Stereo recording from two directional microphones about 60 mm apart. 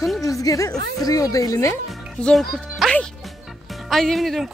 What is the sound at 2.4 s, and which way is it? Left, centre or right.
Speech, centre.